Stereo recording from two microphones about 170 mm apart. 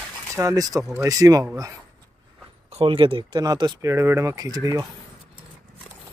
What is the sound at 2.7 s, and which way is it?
Speech, 30° right (ahead or behind).